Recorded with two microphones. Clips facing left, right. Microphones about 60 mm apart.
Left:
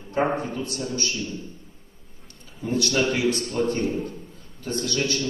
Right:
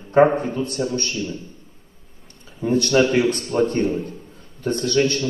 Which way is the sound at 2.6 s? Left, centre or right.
Right.